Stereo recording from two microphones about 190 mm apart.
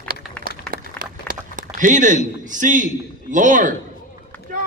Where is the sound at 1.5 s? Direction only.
45° right (ahead or behind).